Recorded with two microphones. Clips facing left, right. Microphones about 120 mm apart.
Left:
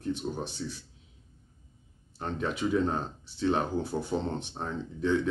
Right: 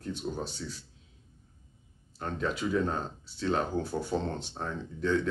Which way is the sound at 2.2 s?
20° left (ahead or behind).